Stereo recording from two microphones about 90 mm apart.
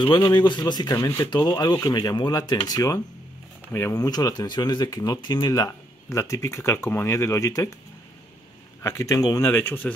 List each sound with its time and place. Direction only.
0.0 s speech: 55° left (ahead or behind)
3.9 s speech: 40° left (ahead or behind)
5.5 s speech: 40° left (ahead or behind)
8.8 s speech: 35° left (ahead or behind)
9.4 s speech: 25° left (ahead or behind)